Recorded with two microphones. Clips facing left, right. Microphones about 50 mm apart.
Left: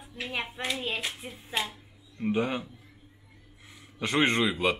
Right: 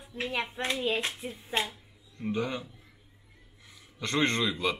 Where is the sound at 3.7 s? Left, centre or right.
Left.